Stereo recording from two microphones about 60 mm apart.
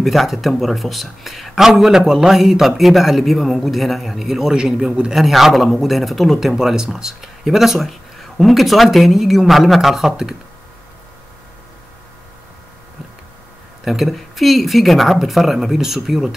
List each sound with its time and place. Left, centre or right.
0.0 s speech: centre
13.8 s speech: centre